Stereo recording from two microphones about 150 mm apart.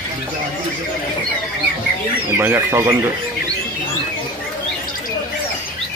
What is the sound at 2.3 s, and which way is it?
Speech, 15° right (ahead or behind).